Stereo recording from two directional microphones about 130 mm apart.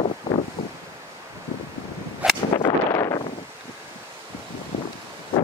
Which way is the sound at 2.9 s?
20° left (ahead or behind).